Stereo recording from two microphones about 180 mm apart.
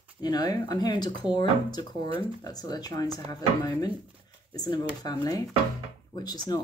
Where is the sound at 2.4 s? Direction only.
20° left (ahead or behind).